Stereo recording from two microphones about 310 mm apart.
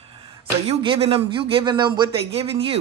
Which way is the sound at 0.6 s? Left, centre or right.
Centre.